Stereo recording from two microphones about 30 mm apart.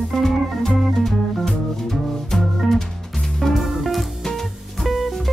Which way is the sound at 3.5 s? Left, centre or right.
Centre.